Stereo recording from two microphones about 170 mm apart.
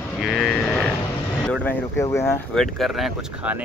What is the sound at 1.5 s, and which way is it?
Speech, 10° left (ahead or behind).